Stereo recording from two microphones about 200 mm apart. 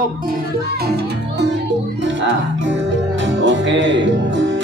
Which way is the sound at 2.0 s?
65° right (ahead or behind).